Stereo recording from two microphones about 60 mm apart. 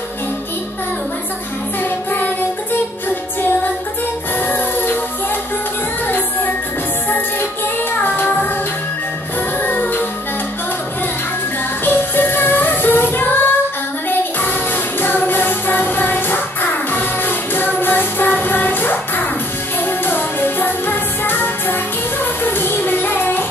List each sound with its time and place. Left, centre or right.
4.5 s music: left
7.1 s music: left
9.6 s music: left
11.8 s music: left
15.0 s music: left